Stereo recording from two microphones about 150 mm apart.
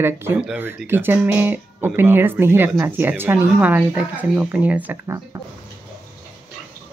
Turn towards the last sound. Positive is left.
turn(degrees=-20)  # may be behind; listen again after turning